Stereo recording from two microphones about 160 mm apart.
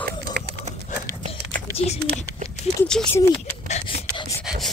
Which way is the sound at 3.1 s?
15° left (ahead or behind).